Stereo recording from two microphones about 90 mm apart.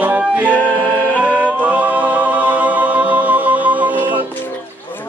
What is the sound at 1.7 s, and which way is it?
Music, 15° right (ahead or behind).